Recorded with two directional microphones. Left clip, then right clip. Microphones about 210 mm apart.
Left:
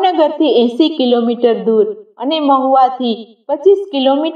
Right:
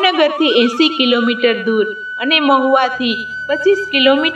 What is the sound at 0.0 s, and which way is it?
A woman's voice, 15° right (ahead or behind).